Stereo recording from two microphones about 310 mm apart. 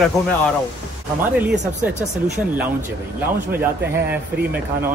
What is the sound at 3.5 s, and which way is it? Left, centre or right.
Speech, centre.